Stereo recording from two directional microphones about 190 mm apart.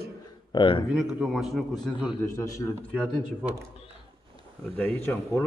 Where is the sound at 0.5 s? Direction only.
25° left (ahead or behind).